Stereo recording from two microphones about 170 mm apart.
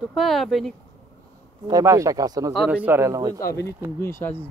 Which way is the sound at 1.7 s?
20° right (ahead or behind).